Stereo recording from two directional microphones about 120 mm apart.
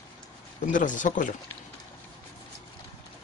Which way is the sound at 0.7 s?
90° left.